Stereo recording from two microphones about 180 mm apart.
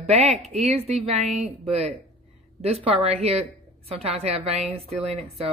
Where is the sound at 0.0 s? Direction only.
35° right (ahead or behind).